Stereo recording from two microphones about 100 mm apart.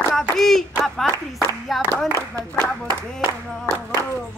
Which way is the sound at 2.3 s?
25° left (ahead or behind).